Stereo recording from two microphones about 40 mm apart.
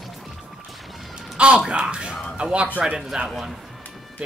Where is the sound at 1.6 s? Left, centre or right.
Centre.